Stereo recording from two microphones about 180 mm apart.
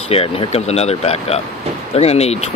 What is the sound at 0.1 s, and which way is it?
Speech, 30° left (ahead or behind).